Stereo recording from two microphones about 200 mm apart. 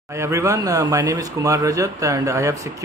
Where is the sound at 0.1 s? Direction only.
15° right (ahead or behind).